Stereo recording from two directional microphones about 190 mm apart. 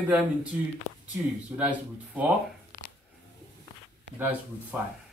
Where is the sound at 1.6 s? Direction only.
10° right (ahead or behind).